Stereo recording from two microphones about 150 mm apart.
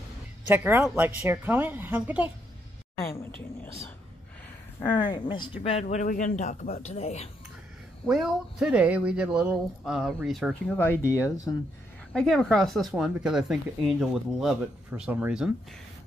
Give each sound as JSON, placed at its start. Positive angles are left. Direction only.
{"t": 0.5, "sound": "a woman's voice", "side_deg": -15}
{"t": 4.8, "sound": "speech", "side_deg": 30}
{"t": 5.6, "sound": "speech", "side_deg": 45}
{"t": 8.0, "sound": "speech", "side_deg": 0}
{"t": 10.8, "sound": "speech", "side_deg": 15}
{"t": 12.1, "sound": "a woman's voice", "side_deg": 5}